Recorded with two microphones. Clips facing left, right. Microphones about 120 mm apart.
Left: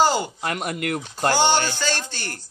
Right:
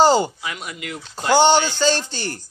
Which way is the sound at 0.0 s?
25° right (ahead or behind).